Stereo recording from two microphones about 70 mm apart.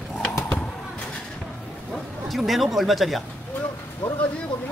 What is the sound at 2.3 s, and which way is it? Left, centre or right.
Speech, centre.